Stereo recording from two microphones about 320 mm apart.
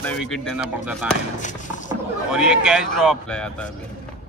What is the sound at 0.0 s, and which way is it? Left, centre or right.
A man's voice, centre.